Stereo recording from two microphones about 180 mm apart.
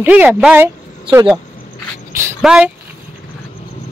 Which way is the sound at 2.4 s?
5° right (ahead or behind).